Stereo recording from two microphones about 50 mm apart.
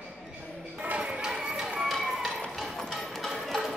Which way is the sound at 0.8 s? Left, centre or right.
Right.